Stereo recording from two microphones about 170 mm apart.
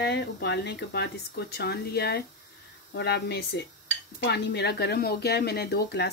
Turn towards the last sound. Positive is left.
turn(degrees=75)  # may be behind; listen again after turning